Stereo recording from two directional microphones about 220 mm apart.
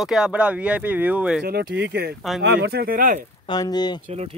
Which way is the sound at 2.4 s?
50° right (ahead or behind).